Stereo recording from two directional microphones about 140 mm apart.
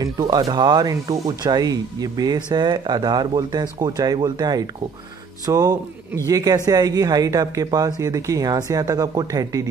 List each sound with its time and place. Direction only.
0.0 s speech: 25° right (ahead or behind)